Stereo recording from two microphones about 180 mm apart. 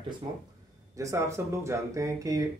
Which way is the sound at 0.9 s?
15° right (ahead or behind).